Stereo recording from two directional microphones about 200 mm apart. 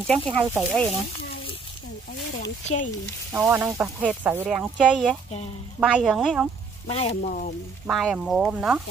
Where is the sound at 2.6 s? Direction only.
40° left (ahead or behind).